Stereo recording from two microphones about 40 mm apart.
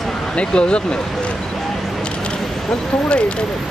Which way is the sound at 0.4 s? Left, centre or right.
Left.